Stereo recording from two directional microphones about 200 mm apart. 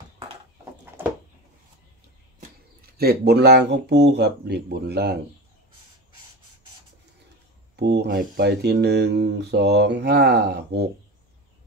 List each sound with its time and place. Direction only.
3.0 s speech: 50° right (ahead or behind)
7.7 s speech: 55° right (ahead or behind)